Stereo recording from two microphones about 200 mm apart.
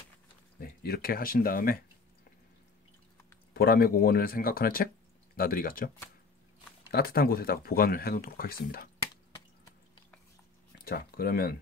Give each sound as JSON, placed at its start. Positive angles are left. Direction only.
{"t": 0.6, "sound": "speech", "side_deg": 50}
{"t": 3.5, "sound": "speech", "side_deg": 50}
{"t": 6.9, "sound": "speech", "side_deg": 50}
{"t": 10.8, "sound": "speech", "side_deg": 50}